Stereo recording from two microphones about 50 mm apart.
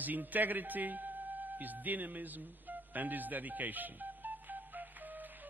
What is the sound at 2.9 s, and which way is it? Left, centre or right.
Telephone dialing, right.